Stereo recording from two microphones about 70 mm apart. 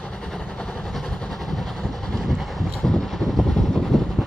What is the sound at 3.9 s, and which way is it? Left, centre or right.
Vehicle, centre.